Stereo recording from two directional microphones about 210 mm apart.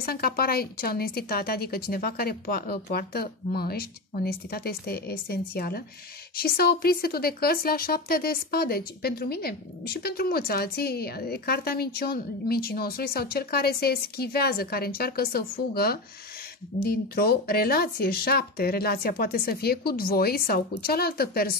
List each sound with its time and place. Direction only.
0.0 s a woman's voice: 45° left (ahead or behind)